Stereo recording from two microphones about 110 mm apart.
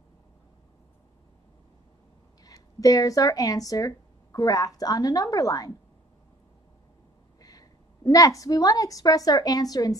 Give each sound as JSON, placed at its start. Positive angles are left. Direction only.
{"t": 2.4, "sound": "speech", "side_deg": 35}
{"t": 7.3, "sound": "a woman's voice", "side_deg": 35}